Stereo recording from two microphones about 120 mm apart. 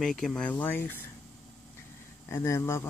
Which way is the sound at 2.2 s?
25° left (ahead or behind).